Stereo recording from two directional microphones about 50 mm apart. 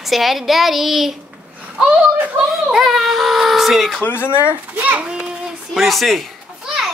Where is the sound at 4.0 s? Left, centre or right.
Left.